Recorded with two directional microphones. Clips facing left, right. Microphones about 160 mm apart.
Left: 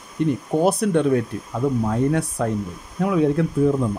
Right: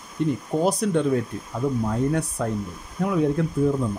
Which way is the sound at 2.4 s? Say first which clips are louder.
Left 3 dB; 80° left.